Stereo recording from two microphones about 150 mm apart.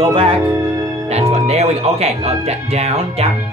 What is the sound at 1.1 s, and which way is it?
Speech, 45° right (ahead or behind).